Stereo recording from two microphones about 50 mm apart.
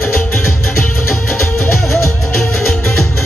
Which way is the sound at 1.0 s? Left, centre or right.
Left.